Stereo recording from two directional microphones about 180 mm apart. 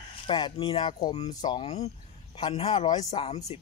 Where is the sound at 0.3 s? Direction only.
25° left (ahead or behind).